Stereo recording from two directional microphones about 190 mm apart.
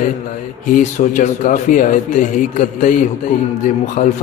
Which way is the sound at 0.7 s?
40° left (ahead or behind).